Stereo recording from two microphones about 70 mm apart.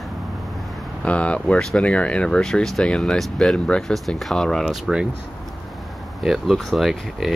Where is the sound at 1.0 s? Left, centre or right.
Centre.